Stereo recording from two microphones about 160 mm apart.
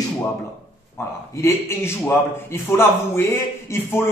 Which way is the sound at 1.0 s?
20° left (ahead or behind).